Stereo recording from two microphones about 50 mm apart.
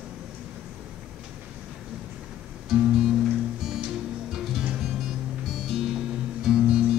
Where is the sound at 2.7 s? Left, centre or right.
Centre.